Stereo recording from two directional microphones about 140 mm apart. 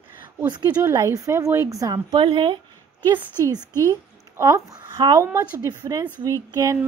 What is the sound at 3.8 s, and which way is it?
Speech, 20° right (ahead or behind).